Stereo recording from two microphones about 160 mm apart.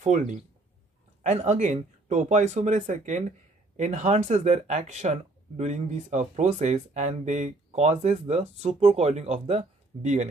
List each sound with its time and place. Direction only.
0.0 s speech: 50° right (ahead or behind)